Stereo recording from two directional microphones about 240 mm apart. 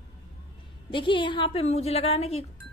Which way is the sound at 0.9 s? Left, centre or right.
Centre.